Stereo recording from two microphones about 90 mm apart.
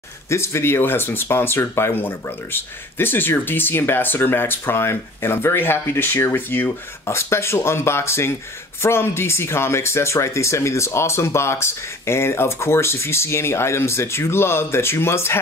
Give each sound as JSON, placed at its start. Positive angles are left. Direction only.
{"t": 0.3, "sound": "speech", "side_deg": 30}